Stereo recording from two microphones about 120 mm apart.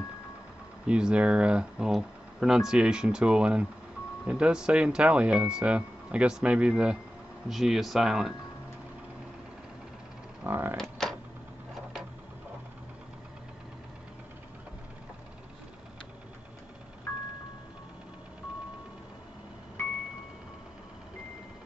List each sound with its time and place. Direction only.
0.8 s speech: 10° right (ahead or behind)
10.4 s speech: 15° right (ahead or behind)
10.8 s typewriter: 5° left (ahead or behind)